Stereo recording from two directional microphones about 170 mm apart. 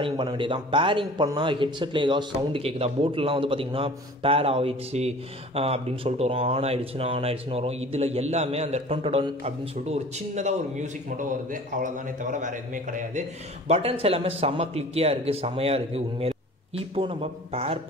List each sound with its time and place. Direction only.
0.0 s a man's voice: 30° right (ahead or behind); by 13.2 s 50° right (ahead or behind)
13.7 s a man's voice: 35° right (ahead or behind)